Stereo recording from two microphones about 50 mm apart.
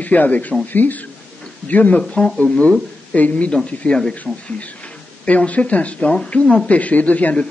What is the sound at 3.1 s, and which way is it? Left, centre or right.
A man's voice, left.